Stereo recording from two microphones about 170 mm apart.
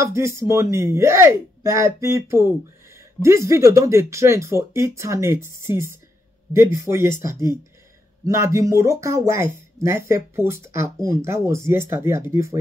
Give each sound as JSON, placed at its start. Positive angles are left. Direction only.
{"t": 0.0, "sound": "speech", "side_deg": -15}